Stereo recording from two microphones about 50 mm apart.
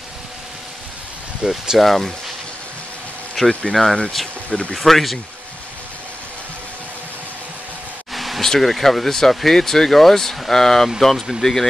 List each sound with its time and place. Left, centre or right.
1.4 s speech: centre
1.8 s speech: centre
3.3 s speech: centre
4.5 s speech: left
4.7 s speech: centre
8.1 s speech: centre